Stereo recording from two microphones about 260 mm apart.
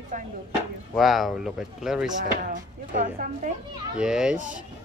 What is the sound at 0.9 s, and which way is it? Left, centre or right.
Speech, centre.